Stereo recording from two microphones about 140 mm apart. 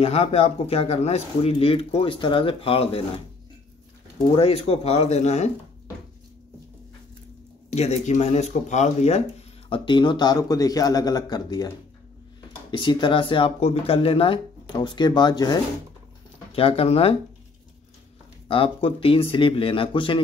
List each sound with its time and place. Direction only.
0.0 s speech: 45° left (ahead or behind)
4.4 s speech: 45° left (ahead or behind)
7.7 s speech: 50° left (ahead or behind)
9.7 s a man's voice: 35° left (ahead or behind)
16.5 s speech: 45° left (ahead or behind)
18.5 s speech: 40° left (ahead or behind)